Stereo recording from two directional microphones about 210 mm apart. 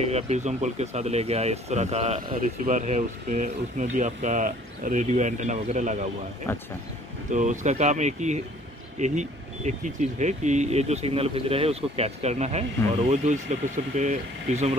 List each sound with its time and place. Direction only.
0.1 s speech: 35° right (ahead or behind)
6.5 s speech: 10° left (ahead or behind)
7.2 s speech: 35° right (ahead or behind)